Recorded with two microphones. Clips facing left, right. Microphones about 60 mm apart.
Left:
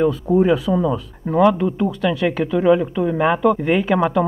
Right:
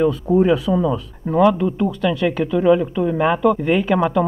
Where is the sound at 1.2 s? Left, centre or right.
Left.